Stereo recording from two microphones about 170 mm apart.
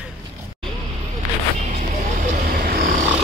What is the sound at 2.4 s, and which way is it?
Vehicle, 60° right (ahead or behind).